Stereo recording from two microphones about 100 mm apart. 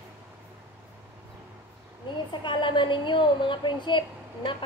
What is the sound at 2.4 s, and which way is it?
A woman's voice, 55° left (ahead or behind).